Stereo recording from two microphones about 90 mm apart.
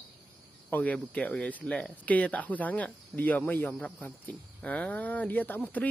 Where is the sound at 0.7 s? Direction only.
15° left (ahead or behind).